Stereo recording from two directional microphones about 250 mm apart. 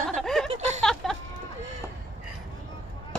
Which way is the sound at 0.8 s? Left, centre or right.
Centre.